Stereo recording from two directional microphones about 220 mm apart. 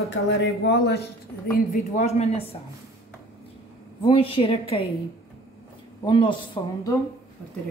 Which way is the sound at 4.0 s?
25° left (ahead or behind).